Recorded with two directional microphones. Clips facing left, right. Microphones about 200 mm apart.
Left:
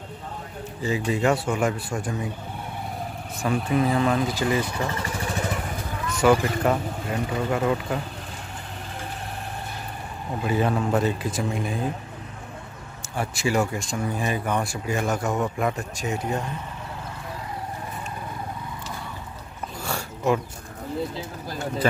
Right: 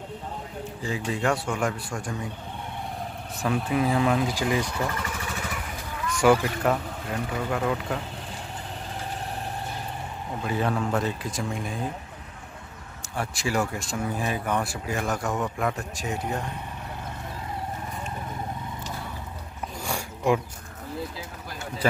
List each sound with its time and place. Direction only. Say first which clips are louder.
0.8 s speech: left 4 dB; 5° left (ahead or behind)
3.4 s speech: left 2 dB; centre (ahead or behind)
4.6 s vehicle: left 1 dB; 20° left (ahead or behind); by 5.6 s 35° left (ahead or behind)
6.3 s speech: left 2 dB; 5° left (ahead or behind)
10.4 s speech: left 3 dB; 5° left (ahead or behind)
13.1 s speech: left 3 dB; centre (ahead or behind)
19.8 s a sound: left 1 dB; 15° right (ahead or behind)